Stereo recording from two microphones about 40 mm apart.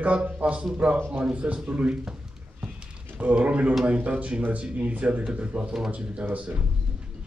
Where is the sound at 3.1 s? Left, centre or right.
Right.